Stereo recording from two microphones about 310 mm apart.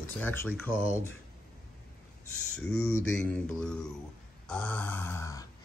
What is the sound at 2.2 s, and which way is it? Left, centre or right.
Speech, left.